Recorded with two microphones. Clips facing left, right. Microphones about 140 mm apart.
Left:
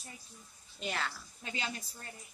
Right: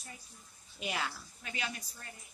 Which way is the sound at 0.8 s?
5° right (ahead or behind).